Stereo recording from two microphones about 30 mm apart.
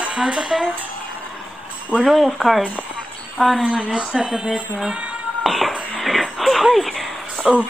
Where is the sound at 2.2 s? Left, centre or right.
Centre.